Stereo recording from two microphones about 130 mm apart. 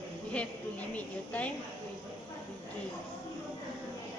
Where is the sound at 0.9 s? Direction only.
10° left (ahead or behind).